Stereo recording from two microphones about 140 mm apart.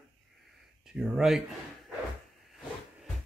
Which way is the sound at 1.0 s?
5° right (ahead or behind).